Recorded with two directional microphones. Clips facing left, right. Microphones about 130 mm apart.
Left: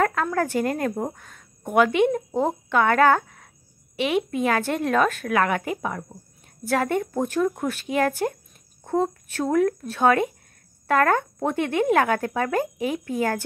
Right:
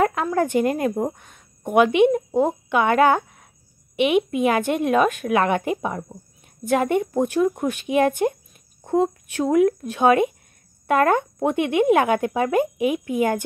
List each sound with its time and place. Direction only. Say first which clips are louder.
0.0 s a woman's voice: right 2 dB; 15° right (ahead or behind)